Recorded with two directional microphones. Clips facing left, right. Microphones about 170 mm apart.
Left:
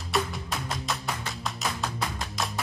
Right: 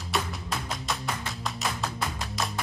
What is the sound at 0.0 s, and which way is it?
Music, centre (ahead or behind).